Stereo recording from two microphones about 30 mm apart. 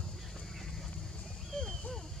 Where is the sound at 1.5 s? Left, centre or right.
Left.